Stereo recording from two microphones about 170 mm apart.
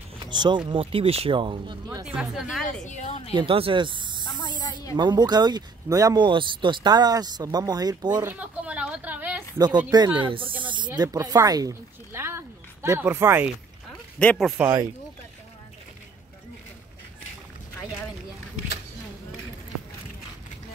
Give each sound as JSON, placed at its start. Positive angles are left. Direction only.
{"t": 0.2, "sound": "a sound", "side_deg": -25}
{"t": 0.7, "sound": "speech", "side_deg": -35}
{"t": 2.0, "sound": "speech", "side_deg": -5}
{"t": 2.8, "sound": "a woman's voice", "side_deg": 45}
{"t": 3.3, "sound": "speech", "side_deg": -30}
{"t": 4.3, "sound": "speech", "side_deg": 25}
{"t": 4.9, "sound": "speech", "side_deg": -25}
{"t": 8.2, "sound": "a sound", "side_deg": -10}
{"t": 9.8, "sound": "speech", "side_deg": -25}
{"t": 14.2, "sound": "speech", "side_deg": 5}
{"t": 14.6, "sound": "speech", "side_deg": -15}